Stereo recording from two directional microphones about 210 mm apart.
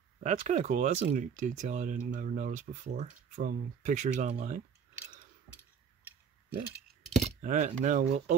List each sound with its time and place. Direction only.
0.2 s speech: 35° right (ahead or behind)
7.4 s speech: 35° right (ahead or behind)